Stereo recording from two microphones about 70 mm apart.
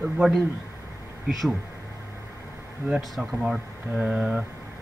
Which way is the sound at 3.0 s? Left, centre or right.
Centre.